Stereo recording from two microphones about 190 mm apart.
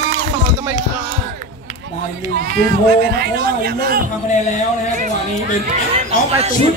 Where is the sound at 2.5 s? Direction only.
55° right (ahead or behind).